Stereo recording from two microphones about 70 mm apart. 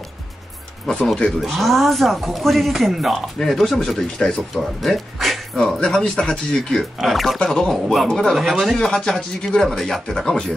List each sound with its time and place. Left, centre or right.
0.8 s speech: centre